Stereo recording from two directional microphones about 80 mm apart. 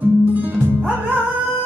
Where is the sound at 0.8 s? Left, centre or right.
Right.